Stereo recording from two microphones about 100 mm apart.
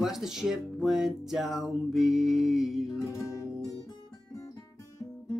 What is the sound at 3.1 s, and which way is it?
Music, 30° left (ahead or behind).